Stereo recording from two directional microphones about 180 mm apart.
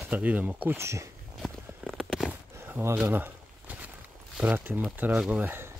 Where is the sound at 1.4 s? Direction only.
Centre (ahead or behind).